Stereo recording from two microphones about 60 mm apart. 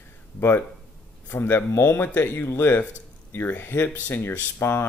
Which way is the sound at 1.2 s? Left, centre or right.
Left.